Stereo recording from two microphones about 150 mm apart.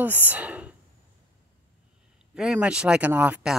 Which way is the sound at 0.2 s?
10° right (ahead or behind).